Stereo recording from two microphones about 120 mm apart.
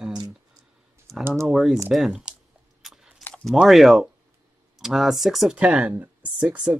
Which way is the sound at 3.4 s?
Centre (ahead or behind).